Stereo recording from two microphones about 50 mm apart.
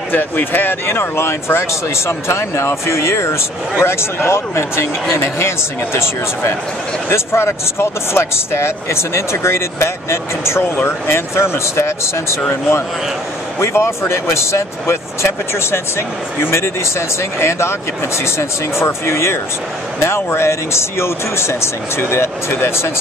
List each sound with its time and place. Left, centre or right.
0.1 s speech: left
7.1 s speech: left
13.6 s speech: left